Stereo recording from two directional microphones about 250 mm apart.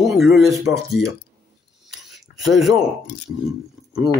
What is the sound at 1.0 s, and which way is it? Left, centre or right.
Speech, left.